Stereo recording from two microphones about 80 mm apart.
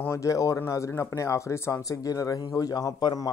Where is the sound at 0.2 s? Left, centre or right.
Left.